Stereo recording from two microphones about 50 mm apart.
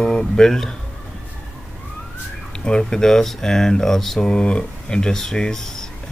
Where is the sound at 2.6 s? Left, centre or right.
Centre.